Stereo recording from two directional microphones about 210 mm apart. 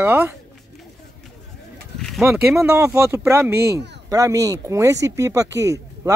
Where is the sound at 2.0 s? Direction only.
Centre (ahead or behind).